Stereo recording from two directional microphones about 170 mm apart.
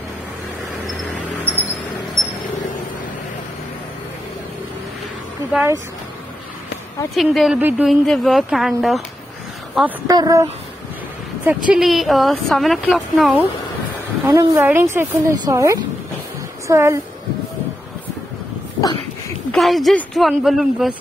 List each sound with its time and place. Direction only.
1.4 s a sound: 10° left (ahead or behind)
7.2 s speech: centre (ahead or behind)
10.0 s speech: 20° right (ahead or behind)
11.4 s speech: 5° right (ahead or behind)
14.2 s a woman's voice: 20° right (ahead or behind)
18.8 s a sound: 20° left (ahead or behind)
19.5 s speech: centre (ahead or behind)